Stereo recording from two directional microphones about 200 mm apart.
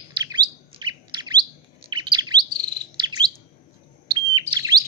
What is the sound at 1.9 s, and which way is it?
Bird, 25° right (ahead or behind).